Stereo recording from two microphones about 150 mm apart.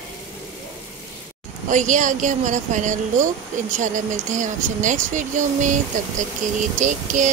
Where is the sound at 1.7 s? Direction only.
55° right (ahead or behind).